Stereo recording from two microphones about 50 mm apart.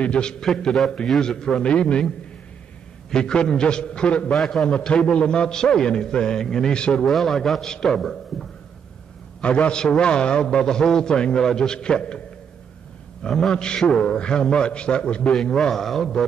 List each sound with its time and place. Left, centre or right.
0.0 s a man's voice: centre
4.3 s a man's voice: centre
7.1 s a man's voice: centre
7.6 s a man's voice: centre
9.4 s a man's voice: left
13.2 s a man's voice: centre